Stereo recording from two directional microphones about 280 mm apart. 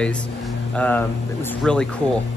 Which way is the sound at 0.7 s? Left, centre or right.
Centre.